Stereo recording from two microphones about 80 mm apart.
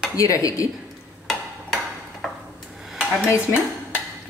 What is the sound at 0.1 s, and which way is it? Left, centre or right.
Speech, left.